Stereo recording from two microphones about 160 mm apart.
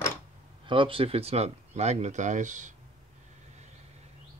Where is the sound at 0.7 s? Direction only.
35° right (ahead or behind); by 2.7 s 50° right (ahead or behind).